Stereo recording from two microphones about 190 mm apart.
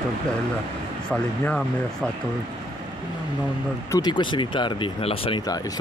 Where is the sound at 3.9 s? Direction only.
25° left (ahead or behind).